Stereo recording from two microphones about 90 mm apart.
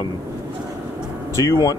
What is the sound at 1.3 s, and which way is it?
Speech, 40° left (ahead or behind).